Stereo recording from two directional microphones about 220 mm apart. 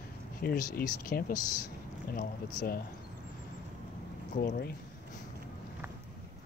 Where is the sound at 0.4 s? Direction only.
40° left (ahead or behind).